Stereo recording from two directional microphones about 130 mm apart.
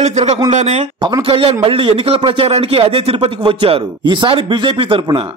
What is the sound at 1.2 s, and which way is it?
Speech, 45° right (ahead or behind).